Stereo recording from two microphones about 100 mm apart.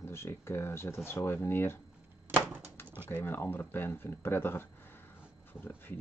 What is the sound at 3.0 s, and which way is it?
Speech, 25° left (ahead or behind).